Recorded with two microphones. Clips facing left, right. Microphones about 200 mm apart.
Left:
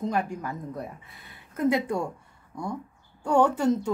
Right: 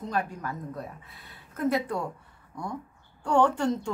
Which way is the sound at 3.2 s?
10° left (ahead or behind).